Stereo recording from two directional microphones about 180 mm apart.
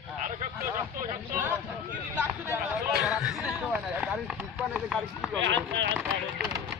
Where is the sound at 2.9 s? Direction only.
Centre (ahead or behind).